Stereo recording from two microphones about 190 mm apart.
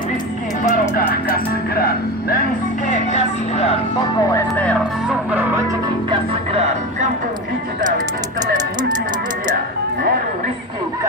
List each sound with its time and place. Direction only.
0.7 s music: 50° left (ahead or behind)
2.9 s vehicle: 35° left (ahead or behind)
4.3 s music: 10° left (ahead or behind)
5.0 s music: 5° right (ahead or behind)
6.0 s music: 35° right (ahead or behind)